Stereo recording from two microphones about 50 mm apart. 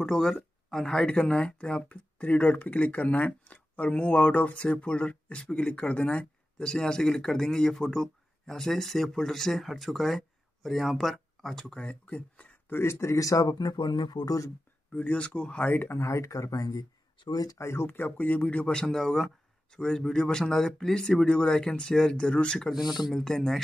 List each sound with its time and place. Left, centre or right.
0.0 s speech: centre
11.7 s speech: left
13.0 s speech: left
15.0 s speech: left
15.7 s speech: left
16.0 s speech: left
17.6 s speech: left
17.8 s speech: left
18.8 s speech: centre
22.7 s speech: centre
23.1 s speech: centre